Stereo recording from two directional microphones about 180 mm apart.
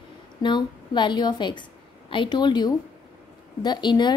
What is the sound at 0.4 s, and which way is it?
A woman's voice, 25° left (ahead or behind).